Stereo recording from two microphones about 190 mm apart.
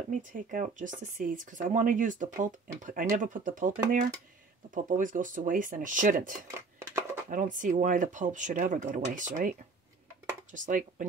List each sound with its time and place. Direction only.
0.1 s speech: 45° right (ahead or behind)
6.8 s a sound: 15° right (ahead or behind)
7.2 s speech: 45° right (ahead or behind)